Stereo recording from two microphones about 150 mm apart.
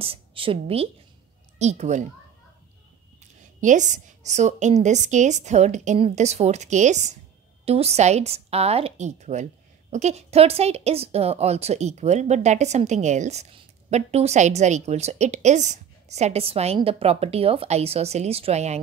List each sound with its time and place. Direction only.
0.0 s a woman's voice: 35° right (ahead or behind)
1.6 s a woman's voice: 50° right (ahead or behind)
3.6 s a woman's voice: 55° right (ahead or behind)